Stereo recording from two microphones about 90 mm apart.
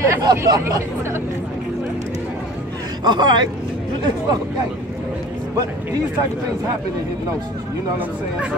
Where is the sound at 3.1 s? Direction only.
55° right (ahead or behind).